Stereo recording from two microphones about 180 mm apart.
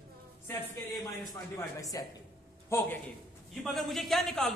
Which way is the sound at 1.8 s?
20° left (ahead or behind).